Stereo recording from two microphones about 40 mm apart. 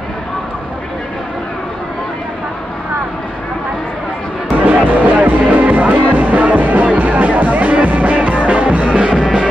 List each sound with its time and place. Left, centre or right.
4.6 s music: right